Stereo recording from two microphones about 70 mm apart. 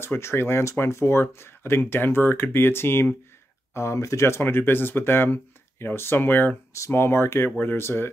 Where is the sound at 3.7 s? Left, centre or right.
Left.